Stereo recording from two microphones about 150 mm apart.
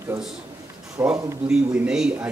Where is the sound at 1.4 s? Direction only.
5° right (ahead or behind).